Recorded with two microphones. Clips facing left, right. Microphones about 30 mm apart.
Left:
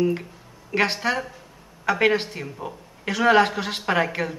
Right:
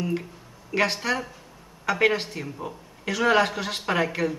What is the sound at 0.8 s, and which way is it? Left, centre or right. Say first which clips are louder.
A man's voice: left 2 dB; centre.